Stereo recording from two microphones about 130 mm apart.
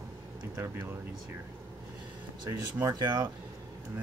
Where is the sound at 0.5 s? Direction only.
20° right (ahead or behind).